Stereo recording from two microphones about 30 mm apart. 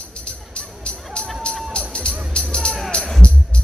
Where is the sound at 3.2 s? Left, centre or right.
Left.